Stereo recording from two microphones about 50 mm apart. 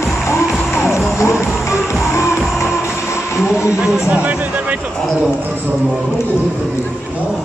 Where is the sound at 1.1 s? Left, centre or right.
Left.